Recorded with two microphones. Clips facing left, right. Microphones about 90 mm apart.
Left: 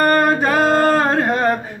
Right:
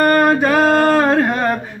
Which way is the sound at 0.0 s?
30° left (ahead or behind).